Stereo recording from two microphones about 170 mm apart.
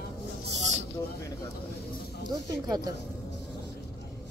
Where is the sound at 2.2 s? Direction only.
25° right (ahead or behind).